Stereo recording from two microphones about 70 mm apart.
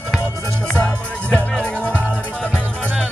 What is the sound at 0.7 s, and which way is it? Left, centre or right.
Music, left.